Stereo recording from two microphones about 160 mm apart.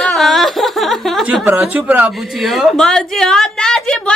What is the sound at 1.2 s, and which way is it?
A woman's voice, 10° right (ahead or behind).